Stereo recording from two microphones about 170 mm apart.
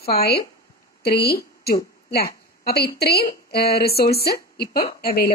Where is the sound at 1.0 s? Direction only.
70° left (ahead or behind).